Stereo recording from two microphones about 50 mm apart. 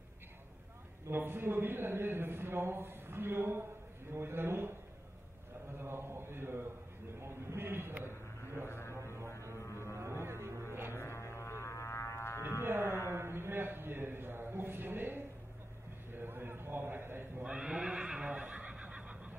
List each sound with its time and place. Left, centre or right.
1.1 s a man's voice: right
5.8 s mantra: right
7.2 s a sound: right
8.6 s music: left
8.9 s music: right
11.0 s music: left
12.6 s music: right
13.1 s a sound: right
17.4 s neigh: centre
18.4 s neigh: right